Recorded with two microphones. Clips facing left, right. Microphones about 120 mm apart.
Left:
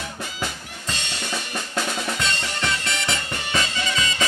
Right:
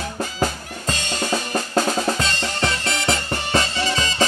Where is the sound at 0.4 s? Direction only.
40° right (ahead or behind).